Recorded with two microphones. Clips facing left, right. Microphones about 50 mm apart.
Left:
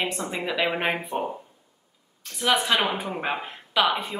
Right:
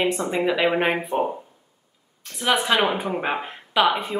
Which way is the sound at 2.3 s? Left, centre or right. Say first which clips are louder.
Right 2 dB; centre.